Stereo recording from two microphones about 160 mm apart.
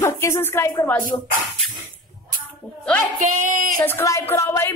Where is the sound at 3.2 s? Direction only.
55° right (ahead or behind).